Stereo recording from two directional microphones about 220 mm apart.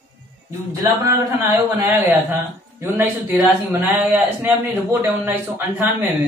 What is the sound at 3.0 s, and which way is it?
A man's voice, 10° right (ahead or behind).